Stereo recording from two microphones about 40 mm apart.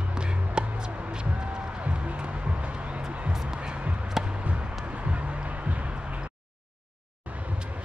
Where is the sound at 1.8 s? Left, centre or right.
Right.